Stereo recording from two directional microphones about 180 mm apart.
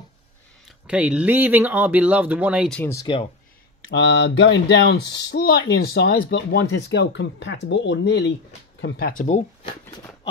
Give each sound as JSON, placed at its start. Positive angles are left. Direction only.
{"t": 0.8, "sound": "speech", "side_deg": -5}
{"t": 2.7, "sound": "speech", "side_deg": 15}
{"t": 3.9, "sound": "mantra", "side_deg": 80}
{"t": 5.1, "sound": "speech", "side_deg": 65}
{"t": 8.8, "sound": "speech", "side_deg": 60}